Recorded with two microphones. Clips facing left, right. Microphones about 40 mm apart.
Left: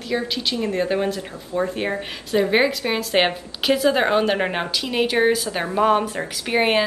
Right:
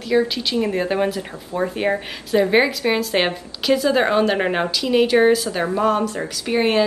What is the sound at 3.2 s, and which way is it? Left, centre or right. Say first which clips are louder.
A woman's voice: left 1 dB; centre.